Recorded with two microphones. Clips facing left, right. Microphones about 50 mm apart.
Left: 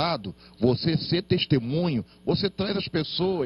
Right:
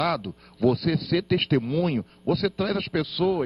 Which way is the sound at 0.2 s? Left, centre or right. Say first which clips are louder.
Right 1 dB; centre.